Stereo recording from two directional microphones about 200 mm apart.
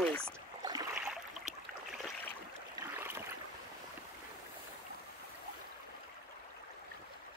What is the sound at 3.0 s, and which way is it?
Boat, 10° right (ahead or behind).